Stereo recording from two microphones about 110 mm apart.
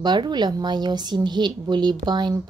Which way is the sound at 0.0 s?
40° right (ahead or behind).